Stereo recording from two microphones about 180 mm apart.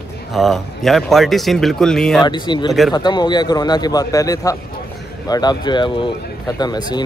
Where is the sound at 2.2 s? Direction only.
25° left (ahead or behind).